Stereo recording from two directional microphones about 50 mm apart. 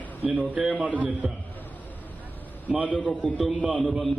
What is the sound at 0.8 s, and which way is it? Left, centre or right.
Speech, right.